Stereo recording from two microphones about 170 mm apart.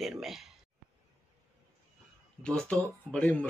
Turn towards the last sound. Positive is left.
turn(degrees=5)  # may be behind; listen again after turning